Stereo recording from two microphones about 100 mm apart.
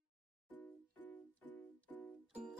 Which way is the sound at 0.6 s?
20° left (ahead or behind).